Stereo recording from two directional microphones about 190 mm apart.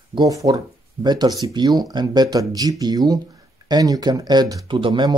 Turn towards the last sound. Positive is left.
turn(degrees=-25)  # may be behind; listen again after turning